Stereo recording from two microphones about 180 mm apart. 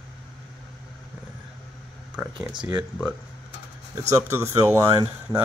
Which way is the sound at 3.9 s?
15° right (ahead or behind).